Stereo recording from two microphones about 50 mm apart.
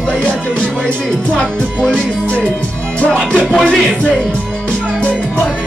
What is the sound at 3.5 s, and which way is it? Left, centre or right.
Music, centre.